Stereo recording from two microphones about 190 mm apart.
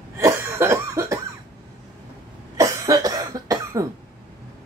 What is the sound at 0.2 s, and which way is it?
Cough, 15° right (ahead or behind).